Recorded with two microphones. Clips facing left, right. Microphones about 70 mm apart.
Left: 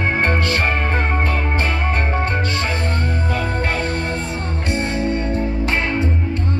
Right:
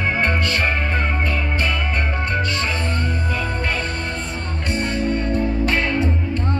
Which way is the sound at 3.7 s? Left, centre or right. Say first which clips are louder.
Left 3 dB; left.